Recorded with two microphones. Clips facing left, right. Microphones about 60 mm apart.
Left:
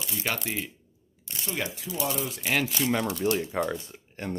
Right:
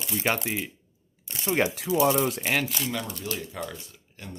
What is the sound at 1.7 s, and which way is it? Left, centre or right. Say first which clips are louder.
Speech: right 8 dB; right.